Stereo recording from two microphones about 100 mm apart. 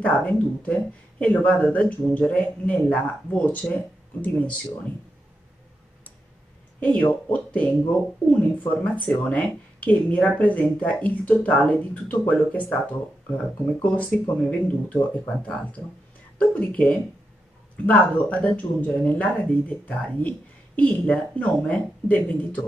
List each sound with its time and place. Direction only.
0.0 s speech: 15° left (ahead or behind)
6.8 s speech: 15° left (ahead or behind)
13.8 s speech: 15° left (ahead or behind)